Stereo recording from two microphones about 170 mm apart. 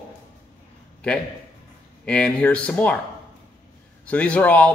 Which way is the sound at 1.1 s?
5° left (ahead or behind).